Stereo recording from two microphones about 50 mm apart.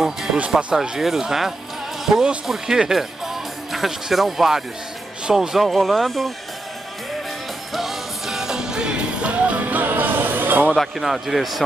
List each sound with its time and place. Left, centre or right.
0.0 s music: centre
0.8 s speech: centre
7.7 s music: centre; by 10.7 s right
10.7 s speech: centre